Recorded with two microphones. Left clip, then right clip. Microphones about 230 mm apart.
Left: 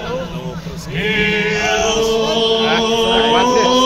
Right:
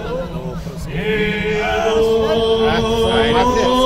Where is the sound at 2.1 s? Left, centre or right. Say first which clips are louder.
Even; right.